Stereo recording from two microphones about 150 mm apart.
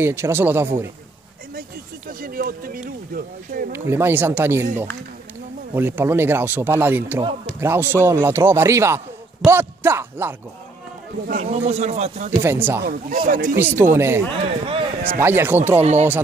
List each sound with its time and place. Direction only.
0.0 s speech: 15° right (ahead or behind)
2.0 s speech: 75° right (ahead or behind)
3.7 s speech: 15° right (ahead or behind)
5.8 s speech: 15° right (ahead or behind)
11.2 s speech: 55° right (ahead or behind)
12.4 s speech: 15° right (ahead or behind)
12.8 s speech: 70° right (ahead or behind)
13.6 s speech: 15° right (ahead or behind)
14.4 s speech: 35° right (ahead or behind)
15.1 s speech: 15° right (ahead or behind)
15.8 s speech: 50° right (ahead or behind)